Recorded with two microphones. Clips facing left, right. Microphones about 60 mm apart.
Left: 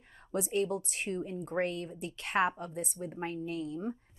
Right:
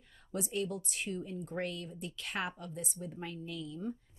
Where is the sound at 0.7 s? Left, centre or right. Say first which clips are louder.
Left 3 dB; left.